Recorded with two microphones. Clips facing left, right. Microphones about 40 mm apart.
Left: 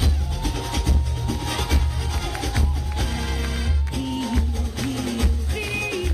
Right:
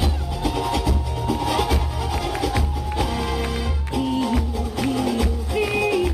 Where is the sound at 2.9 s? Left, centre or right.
Centre.